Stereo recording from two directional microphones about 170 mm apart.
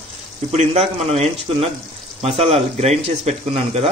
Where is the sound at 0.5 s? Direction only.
40° right (ahead or behind).